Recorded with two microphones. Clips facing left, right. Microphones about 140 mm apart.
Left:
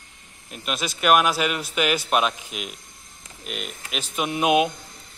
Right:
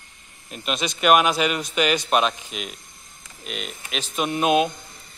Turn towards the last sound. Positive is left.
turn(degrees=10)  # may be behind; listen again after turning